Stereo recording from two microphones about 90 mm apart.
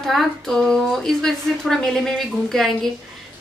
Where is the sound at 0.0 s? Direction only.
Centre (ahead or behind).